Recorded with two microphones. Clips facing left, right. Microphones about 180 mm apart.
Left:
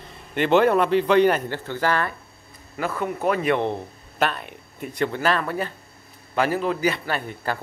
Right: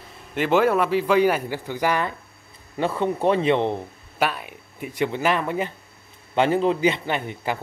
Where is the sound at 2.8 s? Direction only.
30° right (ahead or behind).